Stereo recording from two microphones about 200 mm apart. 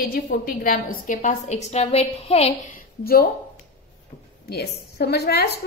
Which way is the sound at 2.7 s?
50° left (ahead or behind).